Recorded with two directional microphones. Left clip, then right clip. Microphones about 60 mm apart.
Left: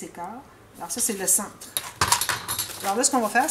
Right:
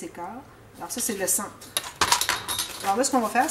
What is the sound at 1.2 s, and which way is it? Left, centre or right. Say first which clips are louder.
Speech: even; left.